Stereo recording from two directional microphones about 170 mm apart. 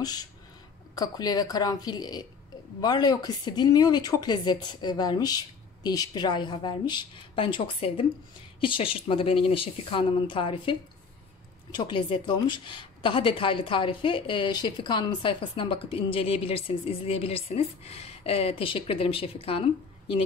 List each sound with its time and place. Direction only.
0.0 s a woman's voice: 20° left (ahead or behind)